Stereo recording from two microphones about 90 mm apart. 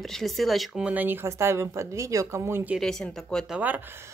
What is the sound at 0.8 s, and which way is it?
Speech, 20° right (ahead or behind).